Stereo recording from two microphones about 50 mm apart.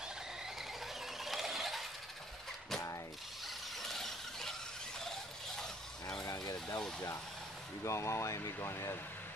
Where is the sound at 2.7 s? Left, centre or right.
Centre.